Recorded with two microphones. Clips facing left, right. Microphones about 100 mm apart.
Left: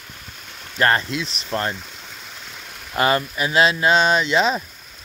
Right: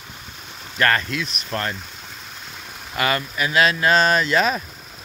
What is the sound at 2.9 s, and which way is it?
Speech, 30° left (ahead or behind).